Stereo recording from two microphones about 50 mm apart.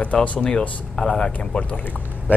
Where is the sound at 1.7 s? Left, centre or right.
Left.